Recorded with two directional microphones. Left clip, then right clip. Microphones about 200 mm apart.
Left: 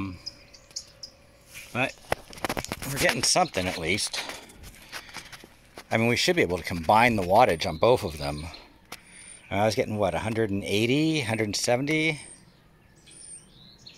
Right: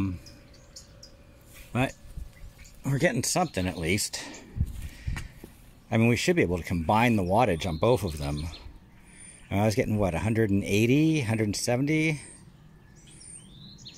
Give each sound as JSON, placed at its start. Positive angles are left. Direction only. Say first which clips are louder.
{"t": 1.7, "sound": "speech", "louder": "left 3 dB", "side_deg": -5}
{"t": 4.0, "sound": "speech", "louder": "left 3 dB", "side_deg": -20}
{"t": 5.9, "sound": "speech", "louder": "left 2 dB", "side_deg": -5}